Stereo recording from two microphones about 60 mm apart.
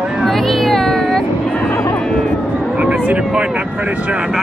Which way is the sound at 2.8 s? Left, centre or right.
Right.